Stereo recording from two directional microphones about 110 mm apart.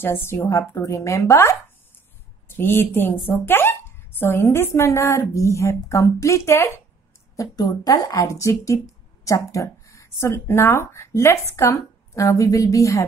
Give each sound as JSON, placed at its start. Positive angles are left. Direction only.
{"t": 0.0, "sound": "a woman's voice", "side_deg": 20}
{"t": 7.3, "sound": "a woman's voice", "side_deg": 35}